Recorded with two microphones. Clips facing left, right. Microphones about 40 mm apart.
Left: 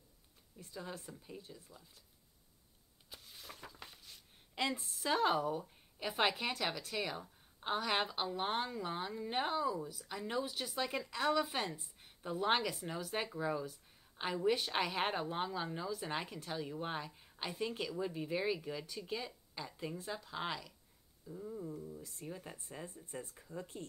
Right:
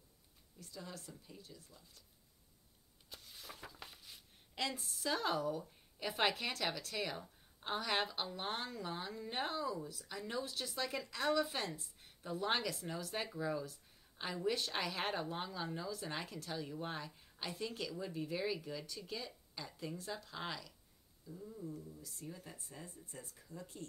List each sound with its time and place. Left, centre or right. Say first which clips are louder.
0.6 s speech: left 4 dB; left
3.1 s a sound: even; centre
4.7 s a woman's voice: left 4 dB; left